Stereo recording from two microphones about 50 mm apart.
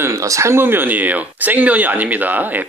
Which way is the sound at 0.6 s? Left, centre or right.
Right.